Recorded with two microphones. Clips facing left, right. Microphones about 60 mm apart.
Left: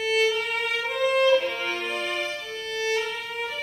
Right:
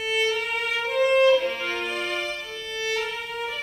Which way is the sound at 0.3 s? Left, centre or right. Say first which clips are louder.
Even; centre.